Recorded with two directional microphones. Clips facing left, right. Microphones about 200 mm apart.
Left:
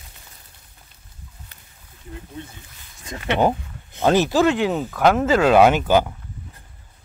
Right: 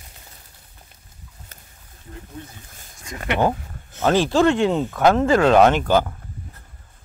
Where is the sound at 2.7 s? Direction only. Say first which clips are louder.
Right 3 dB; 45° right (ahead or behind).